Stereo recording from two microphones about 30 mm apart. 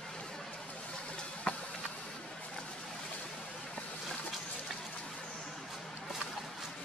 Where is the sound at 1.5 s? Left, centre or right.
Left.